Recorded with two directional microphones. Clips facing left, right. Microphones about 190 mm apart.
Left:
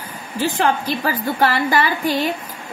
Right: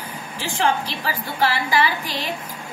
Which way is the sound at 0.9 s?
50° left (ahead or behind).